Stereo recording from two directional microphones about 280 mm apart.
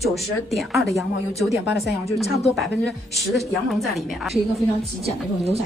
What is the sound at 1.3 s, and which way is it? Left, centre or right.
Speech, left.